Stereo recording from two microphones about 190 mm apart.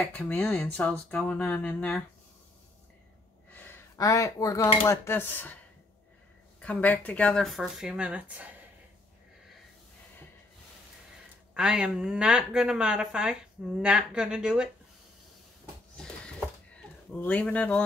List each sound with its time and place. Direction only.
0.1 s speech: 10° left (ahead or behind)
3.5 s a sound: 15° left (ahead or behind)
4.8 s speech: 10° left (ahead or behind)
6.6 s a woman's voice: 10° left (ahead or behind)
11.5 s a woman's voice: 5° right (ahead or behind)
16.0 s a sound: 5° left (ahead or behind)